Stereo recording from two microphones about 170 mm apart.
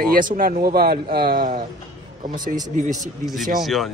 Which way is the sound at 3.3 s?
Centre (ahead or behind).